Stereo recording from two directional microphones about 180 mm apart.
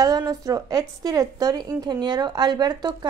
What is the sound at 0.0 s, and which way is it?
Speech, 20° right (ahead or behind).